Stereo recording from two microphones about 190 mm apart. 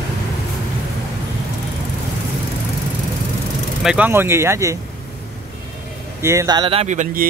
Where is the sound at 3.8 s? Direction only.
10° right (ahead or behind).